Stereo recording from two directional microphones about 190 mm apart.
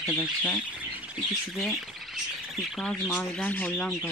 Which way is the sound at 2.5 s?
Centre (ahead or behind).